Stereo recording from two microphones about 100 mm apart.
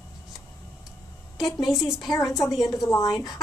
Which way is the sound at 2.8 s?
35° left (ahead or behind).